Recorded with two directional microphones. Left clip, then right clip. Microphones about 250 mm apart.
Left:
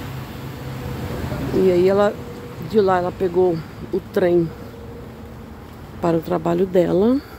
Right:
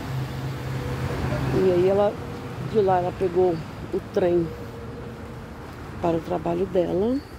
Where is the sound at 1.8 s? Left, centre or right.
Centre.